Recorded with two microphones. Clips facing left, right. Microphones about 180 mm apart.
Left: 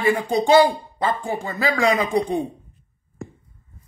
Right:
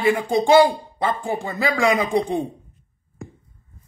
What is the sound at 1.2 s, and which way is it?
Speech, 15° right (ahead or behind).